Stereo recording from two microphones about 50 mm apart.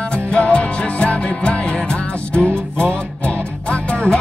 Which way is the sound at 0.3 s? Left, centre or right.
Left.